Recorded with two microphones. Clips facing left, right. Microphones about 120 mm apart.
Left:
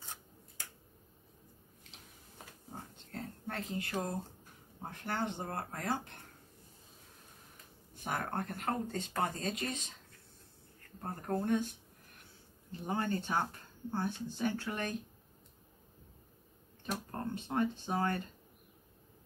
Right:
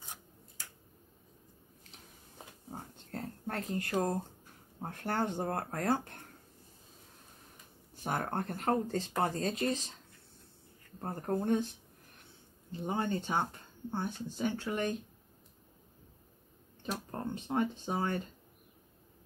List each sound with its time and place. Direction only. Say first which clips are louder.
3.1 s a sound: right 3 dB; 40° right (ahead or behind)
5.0 s speech: right 4 dB; 45° right (ahead or behind)
7.9 s speech: right 2 dB; 35° right (ahead or behind)
11.0 s speech: right 2 dB; 30° right (ahead or behind)
12.7 s speech: right 1 dB; 20° right (ahead or behind)
16.8 s speech: right 1 dB; 20° right (ahead or behind)